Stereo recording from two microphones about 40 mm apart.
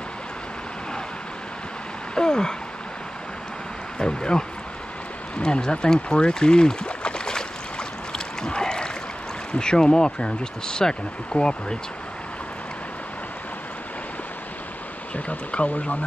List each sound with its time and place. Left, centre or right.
2.1 s a sound: centre
4.0 s speech: left
8.1 s boat: centre
9.6 s speech: centre
15.1 s speech: left